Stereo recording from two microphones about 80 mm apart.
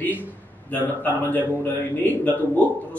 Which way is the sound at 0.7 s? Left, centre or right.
Left.